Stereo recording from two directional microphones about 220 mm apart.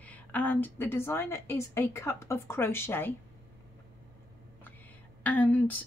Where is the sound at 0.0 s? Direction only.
5° left (ahead or behind).